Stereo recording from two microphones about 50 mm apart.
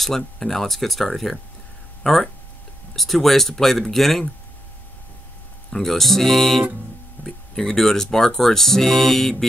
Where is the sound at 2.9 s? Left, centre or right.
Centre.